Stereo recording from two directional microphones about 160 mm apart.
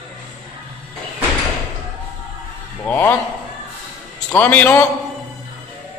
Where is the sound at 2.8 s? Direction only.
10° left (ahead or behind).